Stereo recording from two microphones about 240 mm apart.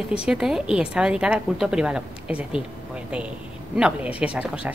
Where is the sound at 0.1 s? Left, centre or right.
Centre.